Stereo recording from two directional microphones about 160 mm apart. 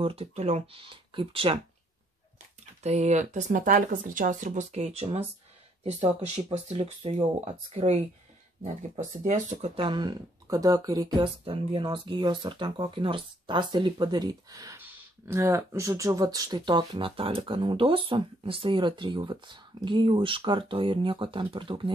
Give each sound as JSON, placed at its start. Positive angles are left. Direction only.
{"t": 0.0, "sound": "speech", "side_deg": -35}
{"t": 2.8, "sound": "speech", "side_deg": -45}
{"t": 8.9, "sound": "speech", "side_deg": -50}
{"t": 9.8, "sound": "speech", "side_deg": -30}